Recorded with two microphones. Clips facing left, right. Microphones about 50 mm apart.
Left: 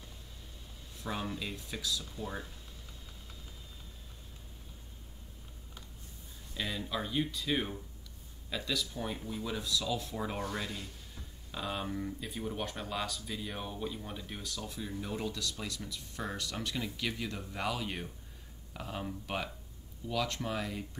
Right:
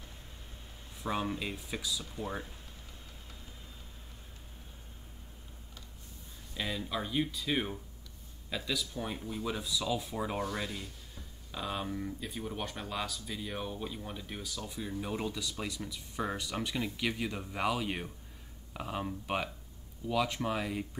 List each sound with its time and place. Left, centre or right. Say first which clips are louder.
1.0 s speech: right 3 dB; right
2.1 s speech: right 2 dB; right
6.5 s speech: right 1 dB; centre